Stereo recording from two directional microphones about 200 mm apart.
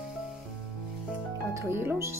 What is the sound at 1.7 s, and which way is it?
Speech, 10° right (ahead or behind).